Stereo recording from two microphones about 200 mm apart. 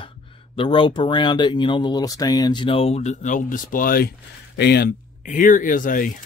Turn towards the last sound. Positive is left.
turn(degrees=40)  # may be behind; listen again after turning